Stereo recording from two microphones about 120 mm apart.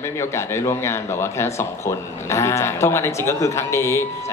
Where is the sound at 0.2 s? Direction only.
20° left (ahead or behind).